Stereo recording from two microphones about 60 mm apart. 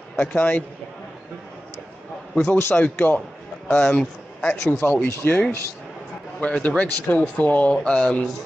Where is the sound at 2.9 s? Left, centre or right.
Left.